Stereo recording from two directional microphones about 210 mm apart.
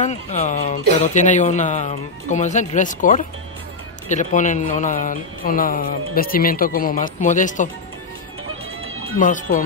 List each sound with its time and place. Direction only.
0.0 s speech: 35° left (ahead or behind)
9.2 s speech: 40° left (ahead or behind)